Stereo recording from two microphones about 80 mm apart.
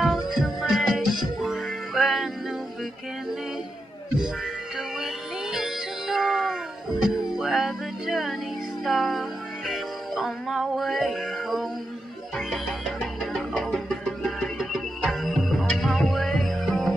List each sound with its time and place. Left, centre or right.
0.0 s music: centre
4.7 s music: centre
13.0 s music: centre